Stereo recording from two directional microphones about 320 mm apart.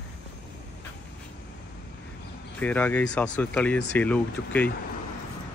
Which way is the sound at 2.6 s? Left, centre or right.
Centre.